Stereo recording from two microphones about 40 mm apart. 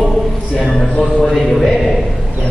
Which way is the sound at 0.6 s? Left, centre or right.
Centre.